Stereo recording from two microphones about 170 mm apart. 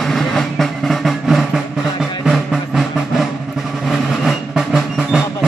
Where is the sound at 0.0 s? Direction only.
Centre (ahead or behind).